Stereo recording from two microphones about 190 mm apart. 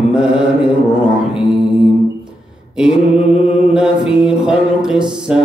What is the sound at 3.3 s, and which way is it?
Mantra, 30° left (ahead or behind).